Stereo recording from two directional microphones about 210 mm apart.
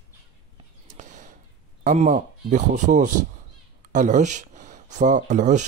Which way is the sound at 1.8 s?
35° right (ahead or behind).